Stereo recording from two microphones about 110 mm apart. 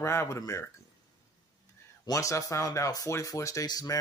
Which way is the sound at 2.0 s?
30° left (ahead or behind).